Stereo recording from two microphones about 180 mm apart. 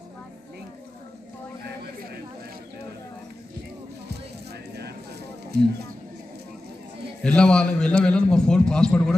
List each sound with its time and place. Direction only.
5.5 s speech: 60° right (ahead or behind)
7.2 s a man's voice: 5° left (ahead or behind)